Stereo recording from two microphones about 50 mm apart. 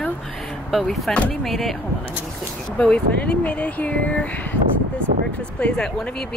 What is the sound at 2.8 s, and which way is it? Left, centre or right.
Speech, left.